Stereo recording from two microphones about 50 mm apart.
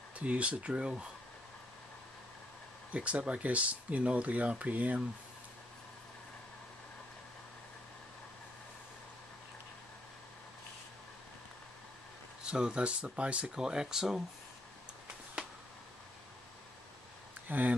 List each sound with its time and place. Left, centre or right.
0.2 s speech: right
2.9 s speech: right
12.4 s speech: centre
17.5 s speech: right